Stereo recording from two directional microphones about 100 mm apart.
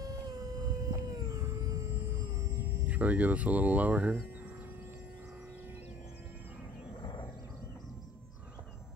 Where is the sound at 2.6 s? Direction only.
15° right (ahead or behind).